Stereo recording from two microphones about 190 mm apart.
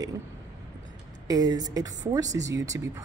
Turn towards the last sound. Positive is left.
turn(degrees=-15)  # may be behind; listen again after turning